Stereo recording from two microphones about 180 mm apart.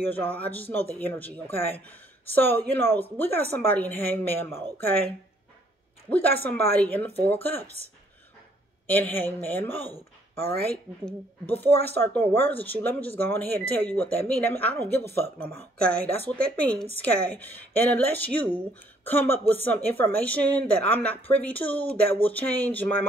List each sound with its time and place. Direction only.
0.0 s speech: 10° left (ahead or behind)
6.0 s speech: 10° left (ahead or behind)
8.8 s speech: 10° left (ahead or behind)
10.4 s speech: 60° right (ahead or behind)
11.1 s speech: 10° left (ahead or behind)